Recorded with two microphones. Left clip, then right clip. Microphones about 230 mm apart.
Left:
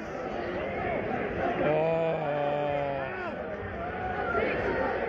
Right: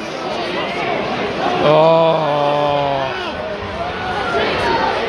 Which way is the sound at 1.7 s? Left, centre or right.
Centre.